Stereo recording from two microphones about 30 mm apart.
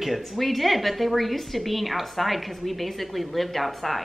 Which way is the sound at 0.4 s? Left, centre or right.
Centre.